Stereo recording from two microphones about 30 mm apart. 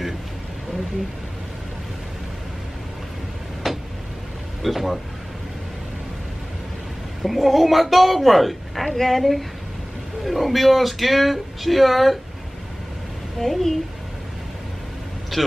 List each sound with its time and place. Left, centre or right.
3.6 s vehicle: centre
4.6 s speech: centre
7.2 s speech: centre
13.4 s a woman's voice: centre
15.3 s a man's voice: centre